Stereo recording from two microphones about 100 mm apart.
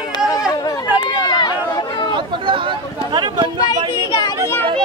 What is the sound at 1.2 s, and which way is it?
Run, 45° left (ahead or behind).